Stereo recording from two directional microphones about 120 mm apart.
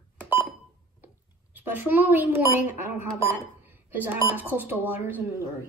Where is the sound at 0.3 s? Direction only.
40° left (ahead or behind).